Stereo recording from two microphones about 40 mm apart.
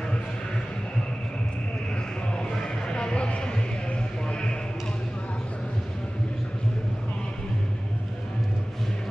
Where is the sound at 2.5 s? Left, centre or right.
Centre.